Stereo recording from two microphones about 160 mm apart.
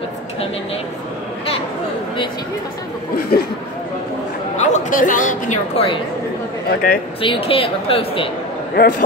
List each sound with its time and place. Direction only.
3.2 s speech: 75° left (ahead or behind)
4.6 s speech: 50° left (ahead or behind)
6.7 s speech: 65° left (ahead or behind)
7.2 s speech: 35° left (ahead or behind)
8.8 s a man's voice: 85° left